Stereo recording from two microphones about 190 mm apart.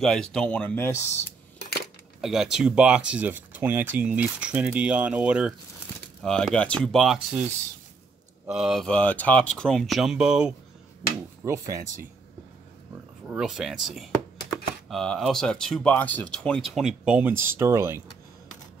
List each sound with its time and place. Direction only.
0.0 s speech: 5° left (ahead or behind)
2.2 s speech: centre (ahead or behind)
11.4 s speech: 15° right (ahead or behind)
13.3 s speech: 5° right (ahead or behind)